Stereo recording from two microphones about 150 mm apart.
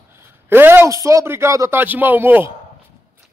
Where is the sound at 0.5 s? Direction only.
15° right (ahead or behind).